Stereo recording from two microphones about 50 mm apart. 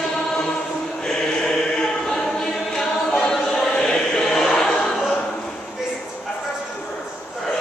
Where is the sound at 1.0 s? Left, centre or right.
Centre.